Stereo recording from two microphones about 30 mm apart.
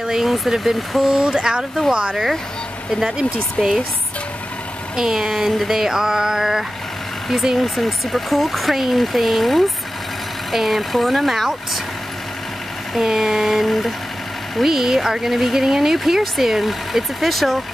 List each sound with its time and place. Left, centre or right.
0.0 s speech: centre
1.0 s a sound: right
2.9 s speech: centre
4.9 s speech: centre
5.9 s a sound: right
7.5 s speech: centre
13.0 s speech: centre
13.7 s vehicle: centre
14.6 s speech: centre